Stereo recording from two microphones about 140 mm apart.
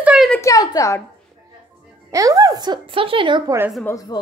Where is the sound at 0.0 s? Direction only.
5° right (ahead or behind).